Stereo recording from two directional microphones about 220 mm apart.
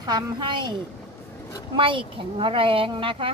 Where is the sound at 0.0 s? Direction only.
20° right (ahead or behind).